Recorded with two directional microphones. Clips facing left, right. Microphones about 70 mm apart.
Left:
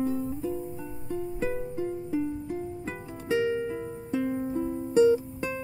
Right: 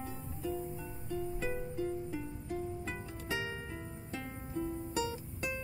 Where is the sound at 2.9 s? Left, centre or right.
Centre.